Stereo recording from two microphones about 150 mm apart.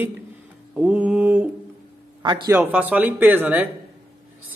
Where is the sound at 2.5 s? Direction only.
10° right (ahead or behind).